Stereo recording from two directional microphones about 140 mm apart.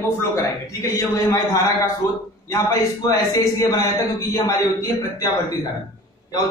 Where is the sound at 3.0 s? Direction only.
20° left (ahead or behind).